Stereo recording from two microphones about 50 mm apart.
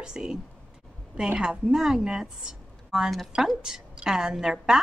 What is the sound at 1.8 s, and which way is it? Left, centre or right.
A woman's voice, centre.